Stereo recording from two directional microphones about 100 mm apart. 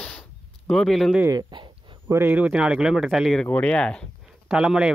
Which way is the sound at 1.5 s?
55° right (ahead or behind).